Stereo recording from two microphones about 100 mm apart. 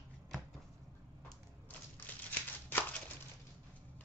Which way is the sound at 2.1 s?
15° left (ahead or behind).